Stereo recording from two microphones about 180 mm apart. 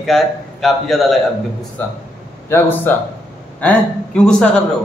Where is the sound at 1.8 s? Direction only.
10° left (ahead or behind).